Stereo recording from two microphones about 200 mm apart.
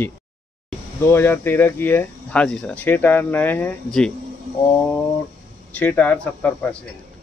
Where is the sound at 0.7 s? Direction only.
10° left (ahead or behind).